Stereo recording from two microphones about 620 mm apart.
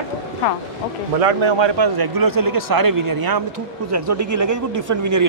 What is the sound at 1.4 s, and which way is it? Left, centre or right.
A man's voice, right.